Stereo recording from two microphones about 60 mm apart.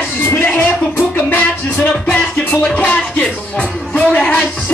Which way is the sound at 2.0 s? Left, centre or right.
Centre.